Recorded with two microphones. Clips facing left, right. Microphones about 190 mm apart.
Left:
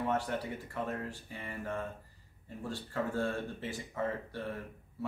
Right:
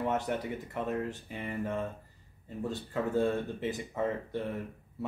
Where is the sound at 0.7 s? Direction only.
20° right (ahead or behind).